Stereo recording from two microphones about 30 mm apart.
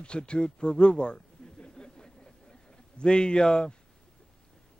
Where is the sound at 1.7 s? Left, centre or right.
Left.